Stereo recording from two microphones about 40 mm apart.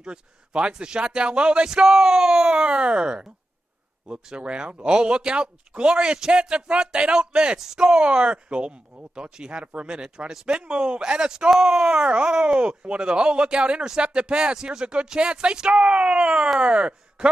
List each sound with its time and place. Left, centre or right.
0.0 s speech: right
1.7 s speech: centre
2.5 s speech: right
8.0 s speech: right; by 11.9 s centre
11.9 s speech: right